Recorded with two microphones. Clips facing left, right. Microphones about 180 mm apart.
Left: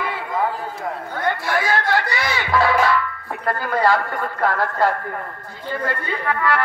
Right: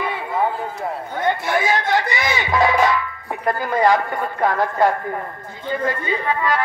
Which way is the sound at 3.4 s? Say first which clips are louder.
Right 2 dB; 15° right (ahead or behind).